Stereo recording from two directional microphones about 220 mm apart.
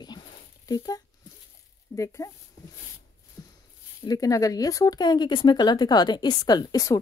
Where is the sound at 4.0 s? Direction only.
15° left (ahead or behind).